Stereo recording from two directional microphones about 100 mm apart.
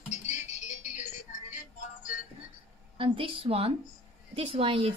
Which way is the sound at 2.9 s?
60° right (ahead or behind).